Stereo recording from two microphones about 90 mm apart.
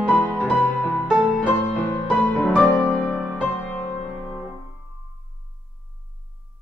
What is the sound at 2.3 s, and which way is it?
Music, 15° left (ahead or behind).